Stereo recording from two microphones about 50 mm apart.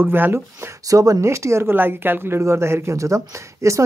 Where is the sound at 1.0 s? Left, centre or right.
Right.